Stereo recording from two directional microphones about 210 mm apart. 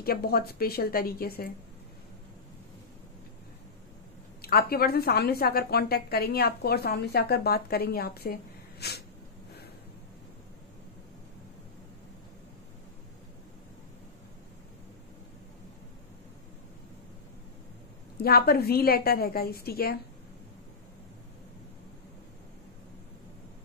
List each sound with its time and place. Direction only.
0.0 s a woman's voice: 45° left (ahead or behind)
4.4 s a woman's voice: 45° left (ahead or behind)
18.2 s a woman's voice: 45° left (ahead or behind)